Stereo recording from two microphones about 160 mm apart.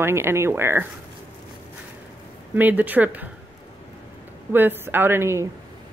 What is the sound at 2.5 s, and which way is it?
Speech, 10° right (ahead or behind).